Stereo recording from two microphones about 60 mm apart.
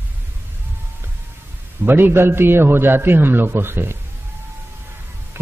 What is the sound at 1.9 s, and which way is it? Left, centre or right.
A man's voice, right.